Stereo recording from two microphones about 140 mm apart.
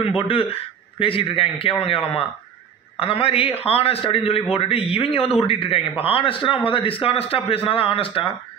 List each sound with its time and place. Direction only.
0.3 s a man's voice: 40° left (ahead or behind)